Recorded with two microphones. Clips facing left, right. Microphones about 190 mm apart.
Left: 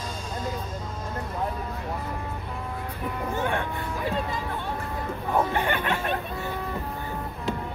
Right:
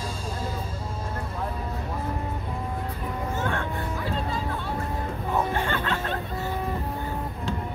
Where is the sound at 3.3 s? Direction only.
15° left (ahead or behind).